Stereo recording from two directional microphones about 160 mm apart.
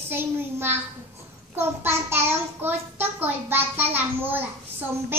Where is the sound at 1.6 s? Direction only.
15° right (ahead or behind).